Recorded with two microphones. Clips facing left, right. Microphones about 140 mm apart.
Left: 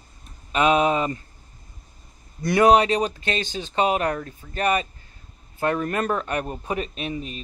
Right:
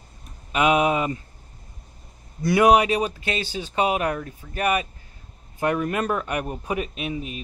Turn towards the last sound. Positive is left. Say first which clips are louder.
# right 1 dB
turn(degrees=-10)  # may be behind; listen again after turning